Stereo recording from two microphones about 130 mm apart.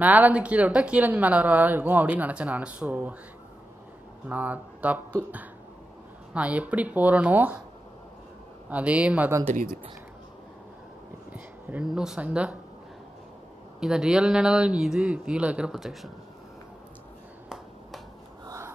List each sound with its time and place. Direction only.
0.0 s speech: 10° right (ahead or behind)
4.3 s speech: 15° right (ahead or behind)
8.6 s speech: 10° right (ahead or behind)
9.5 s speech: 90° right
11.3 s speech: 10° right (ahead or behind)
13.7 s speech: 5° right (ahead or behind)